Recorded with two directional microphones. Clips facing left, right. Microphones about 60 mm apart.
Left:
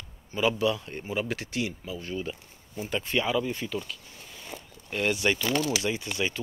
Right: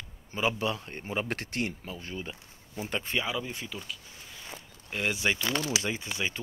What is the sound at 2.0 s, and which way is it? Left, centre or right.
Speech, right.